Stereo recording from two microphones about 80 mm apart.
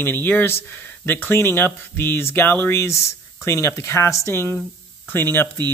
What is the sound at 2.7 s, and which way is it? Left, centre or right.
Speech, left.